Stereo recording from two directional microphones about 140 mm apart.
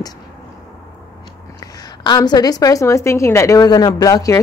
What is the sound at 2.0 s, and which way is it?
Speech, 30° left (ahead or behind).